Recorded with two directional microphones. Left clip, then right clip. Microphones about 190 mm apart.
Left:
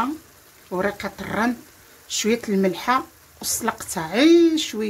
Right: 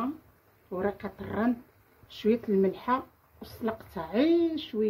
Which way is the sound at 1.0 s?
50° left (ahead or behind).